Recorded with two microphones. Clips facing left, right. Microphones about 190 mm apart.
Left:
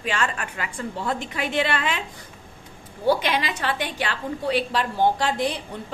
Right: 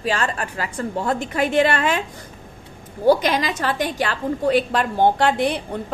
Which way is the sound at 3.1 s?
40° right (ahead or behind).